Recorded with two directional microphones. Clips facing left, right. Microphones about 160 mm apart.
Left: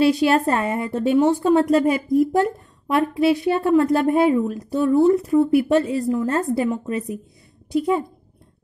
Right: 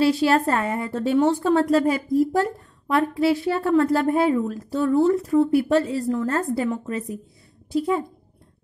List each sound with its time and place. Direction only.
0.0 s a woman's voice: 20° left (ahead or behind)